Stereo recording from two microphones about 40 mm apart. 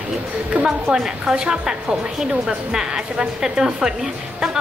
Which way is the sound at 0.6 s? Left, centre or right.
Centre.